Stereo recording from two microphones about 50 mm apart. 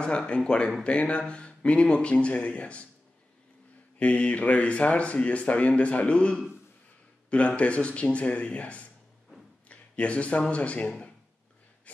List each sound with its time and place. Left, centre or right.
0.0 s speech: left
4.0 s speech: left
9.7 s a sound: left
10.5 s speech: left